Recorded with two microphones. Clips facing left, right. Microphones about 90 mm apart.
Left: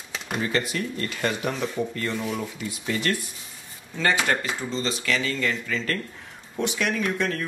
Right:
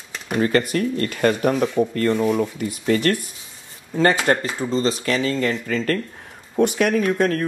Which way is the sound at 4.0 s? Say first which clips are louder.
Right 6 dB; 35° right (ahead or behind).